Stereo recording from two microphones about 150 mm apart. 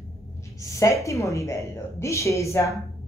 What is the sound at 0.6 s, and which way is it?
A woman's voice, 20° left (ahead or behind).